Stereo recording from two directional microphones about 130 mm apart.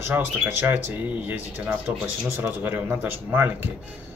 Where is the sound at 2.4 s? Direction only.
15° right (ahead or behind).